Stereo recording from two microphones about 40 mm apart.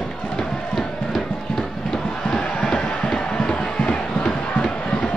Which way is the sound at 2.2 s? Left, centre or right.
Left.